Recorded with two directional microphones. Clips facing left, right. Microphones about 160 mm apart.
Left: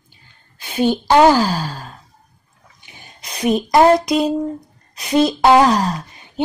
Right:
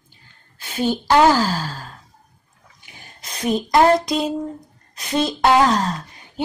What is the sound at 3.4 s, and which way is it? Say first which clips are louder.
Speech: left 3 dB; 20° left (ahead or behind).